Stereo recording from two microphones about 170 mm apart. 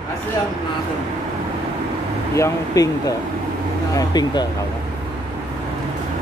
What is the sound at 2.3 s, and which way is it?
Speech, 20° left (ahead or behind).